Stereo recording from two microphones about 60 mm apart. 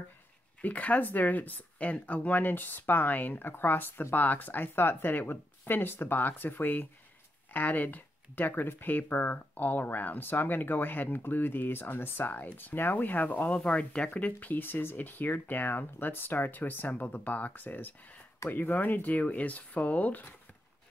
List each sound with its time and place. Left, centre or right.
0.6 s speech: left